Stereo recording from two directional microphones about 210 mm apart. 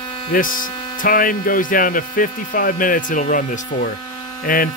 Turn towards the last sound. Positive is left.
turn(degrees=40)  # may be behind; listen again after turning